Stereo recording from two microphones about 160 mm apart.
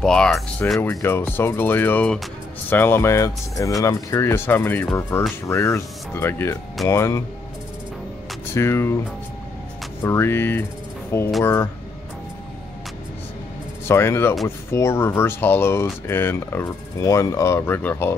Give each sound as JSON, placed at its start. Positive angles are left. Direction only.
{"t": 0.0, "sound": "speech", "side_deg": 5}
{"t": 0.7, "sound": "speech", "side_deg": 15}
{"t": 8.5, "sound": "speech", "side_deg": 15}
{"t": 10.0, "sound": "speech", "side_deg": 15}
{"t": 13.8, "sound": "speech", "side_deg": 15}